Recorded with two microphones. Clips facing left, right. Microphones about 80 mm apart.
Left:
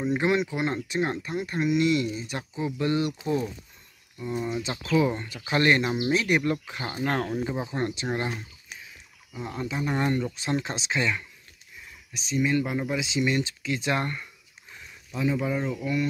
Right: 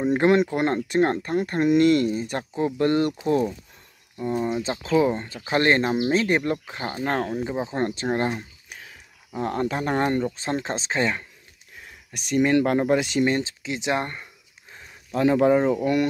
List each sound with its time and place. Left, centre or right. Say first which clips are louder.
0.0 s speech: right 6 dB; right
4.2 s speech: right 5 dB; right
9.4 s speech: right 6 dB; right
12.1 s speech: right 5 dB; right
13.4 s a sound: even; right
15.1 s speech: right 9 dB; right